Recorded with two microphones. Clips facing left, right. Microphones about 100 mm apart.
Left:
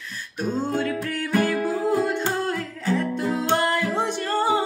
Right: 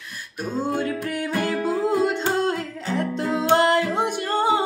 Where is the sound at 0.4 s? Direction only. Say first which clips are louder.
Even; 10° right (ahead or behind).